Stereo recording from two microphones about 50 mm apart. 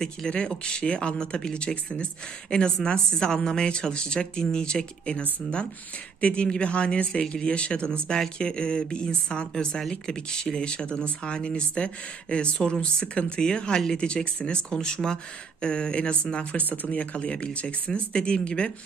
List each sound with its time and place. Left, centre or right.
0.3 s speech: centre
6.2 s speech: left